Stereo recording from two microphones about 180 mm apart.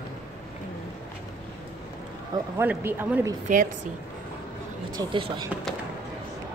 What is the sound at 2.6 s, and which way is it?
Speech, 10° right (ahead or behind).